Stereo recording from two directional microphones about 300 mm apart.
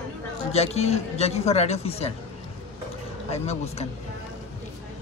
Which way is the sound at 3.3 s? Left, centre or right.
Left.